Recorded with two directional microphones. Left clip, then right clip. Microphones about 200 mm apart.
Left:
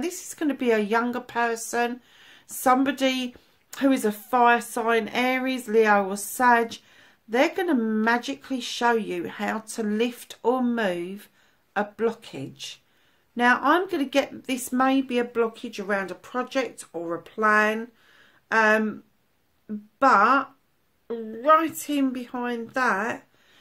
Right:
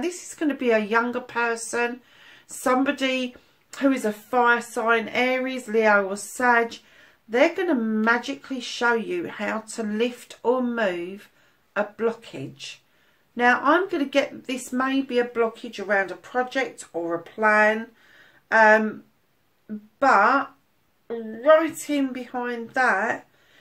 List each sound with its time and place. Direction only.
0.0 s speech: 40° left (ahead or behind)
20.0 s speech: 45° left (ahead or behind)